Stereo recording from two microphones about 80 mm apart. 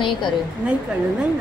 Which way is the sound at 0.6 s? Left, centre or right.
Centre.